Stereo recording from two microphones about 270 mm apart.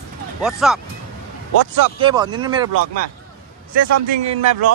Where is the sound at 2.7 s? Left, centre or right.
Right.